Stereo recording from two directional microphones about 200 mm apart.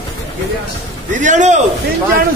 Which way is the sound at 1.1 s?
40° right (ahead or behind).